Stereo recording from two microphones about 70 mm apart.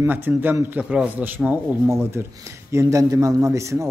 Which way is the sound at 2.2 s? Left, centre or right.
Right.